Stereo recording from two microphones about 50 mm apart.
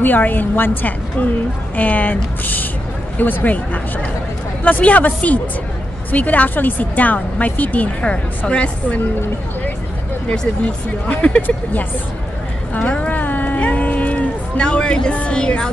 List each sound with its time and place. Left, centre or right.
0.0 s speech: left
10.6 s speech: left
12.7 s speech: left
13.1 s a sound: left; by 15.7 s centre